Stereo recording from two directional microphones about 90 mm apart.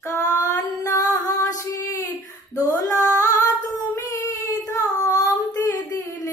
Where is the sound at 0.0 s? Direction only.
45° left (ahead or behind).